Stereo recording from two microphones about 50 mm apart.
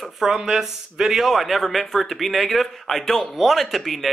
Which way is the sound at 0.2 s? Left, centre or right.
Centre.